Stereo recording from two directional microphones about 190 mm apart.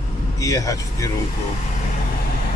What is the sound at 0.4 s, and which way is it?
Speech, 15° left (ahead or behind).